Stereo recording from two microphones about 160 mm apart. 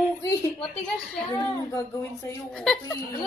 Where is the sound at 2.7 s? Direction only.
5° left (ahead or behind).